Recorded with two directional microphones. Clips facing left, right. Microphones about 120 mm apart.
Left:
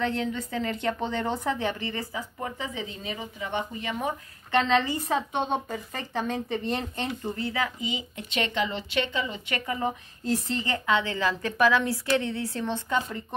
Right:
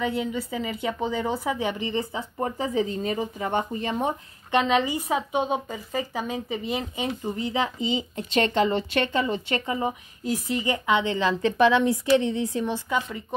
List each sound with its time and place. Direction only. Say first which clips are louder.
0.0 s a woman's voice: right 1 dB; 10° right (ahead or behind)
2.4 s speech: right 11 dB; 40° right (ahead or behind)
4.5 s a woman's voice: right 1 dB; 15° right (ahead or behind)
7.3 s speech: right 3 dB; 20° right (ahead or behind); by 9.4 s 45° right (ahead or behind)
9.5 s a woman's voice: right 3 dB; 20° right (ahead or behind)